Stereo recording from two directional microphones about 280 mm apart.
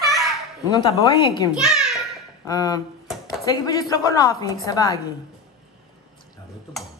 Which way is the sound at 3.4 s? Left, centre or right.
Centre.